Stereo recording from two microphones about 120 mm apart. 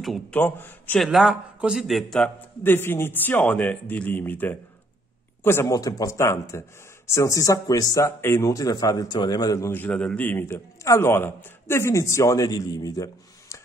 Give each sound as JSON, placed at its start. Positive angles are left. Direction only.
{"t": 0.3, "sound": "speech", "side_deg": 15}
{"t": 0.9, "sound": "a man's voice", "side_deg": 0}
{"t": 2.6, "sound": "speech", "side_deg": 20}